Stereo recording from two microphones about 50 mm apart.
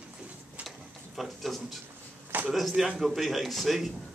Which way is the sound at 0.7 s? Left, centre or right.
Centre.